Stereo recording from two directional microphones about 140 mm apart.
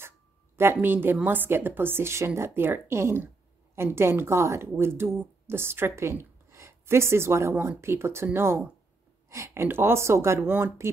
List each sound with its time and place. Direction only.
0.6 s a woman's voice: 15° right (ahead or behind)